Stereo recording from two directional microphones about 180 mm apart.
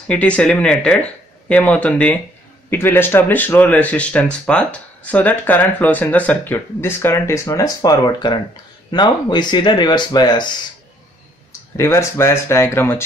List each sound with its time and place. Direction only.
0.1 s speech: 5° left (ahead or behind); by 10.5 s 25° left (ahead or behind)
11.7 s speech: 15° left (ahead or behind)